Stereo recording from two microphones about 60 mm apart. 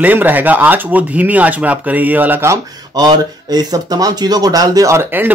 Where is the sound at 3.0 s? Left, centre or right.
Right.